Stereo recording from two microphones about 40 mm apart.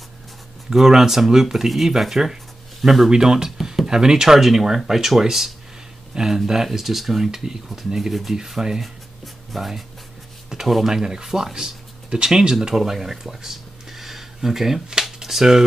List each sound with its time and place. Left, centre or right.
0.7 s speech: centre
8.4 s speech: centre
8.8 s music: centre
10.5 s a sound: centre
10.9 s speech: centre